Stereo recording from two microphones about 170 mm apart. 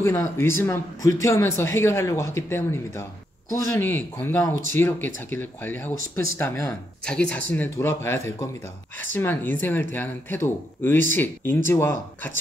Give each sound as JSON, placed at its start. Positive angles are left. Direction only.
{"t": 0.0, "sound": "speech", "side_deg": 20}